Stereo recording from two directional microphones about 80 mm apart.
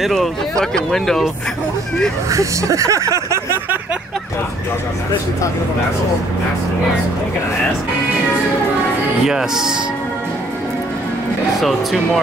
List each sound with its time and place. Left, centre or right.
0.0 s speech: centre
2.3 s speech: right
9.2 s speech: centre